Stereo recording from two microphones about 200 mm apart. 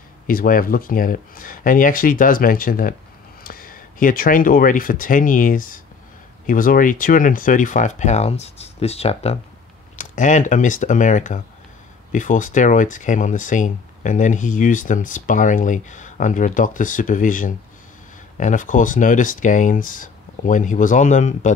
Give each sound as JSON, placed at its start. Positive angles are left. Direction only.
{"t": 0.3, "sound": "speech", "side_deg": 45}